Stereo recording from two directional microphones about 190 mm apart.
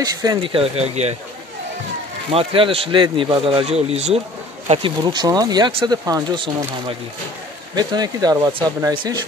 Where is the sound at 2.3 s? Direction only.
30° right (ahead or behind).